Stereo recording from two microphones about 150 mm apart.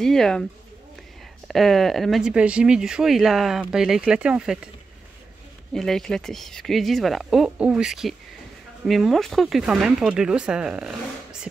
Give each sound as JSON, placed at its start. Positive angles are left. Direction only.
{"t": 0.0, "sound": "speech", "side_deg": 5}
{"t": 1.5, "sound": "speech", "side_deg": 0}
{"t": 5.7, "sound": "speech", "side_deg": 0}